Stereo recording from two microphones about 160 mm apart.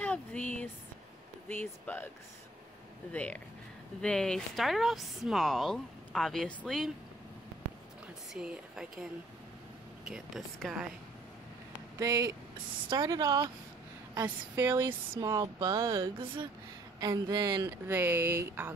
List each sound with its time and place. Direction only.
0.0 s speech: 10° left (ahead or behind)
3.1 s a woman's voice: 10° left (ahead or behind)
8.3 s speech: 5° right (ahead or behind)
10.0 s a woman's voice: centre (ahead or behind)
12.0 s speech: 20° right (ahead or behind)
14.5 s speech: 15° right (ahead or behind)
17.8 s speech: 10° right (ahead or behind)